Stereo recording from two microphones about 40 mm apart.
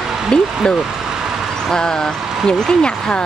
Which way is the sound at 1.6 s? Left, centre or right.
Centre.